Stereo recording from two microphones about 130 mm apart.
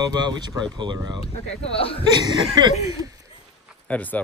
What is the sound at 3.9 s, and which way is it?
Speech, 10° left (ahead or behind).